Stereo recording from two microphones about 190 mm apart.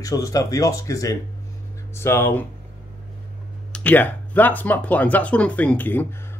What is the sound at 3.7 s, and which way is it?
Speech, 10° left (ahead or behind).